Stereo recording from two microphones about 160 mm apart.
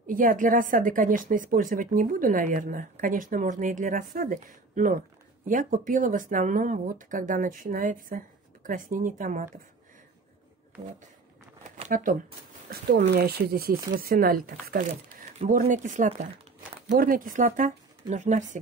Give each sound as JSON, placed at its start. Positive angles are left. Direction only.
{"t": 0.0, "sound": "a woman's voice", "side_deg": -60}
{"t": 10.8, "sound": "speech", "side_deg": -50}
{"t": 11.7, "sound": "shuffling cards", "side_deg": -55}
{"t": 12.6, "sound": "a woman's voice", "side_deg": -65}
{"t": 15.6, "sound": "speech", "side_deg": -50}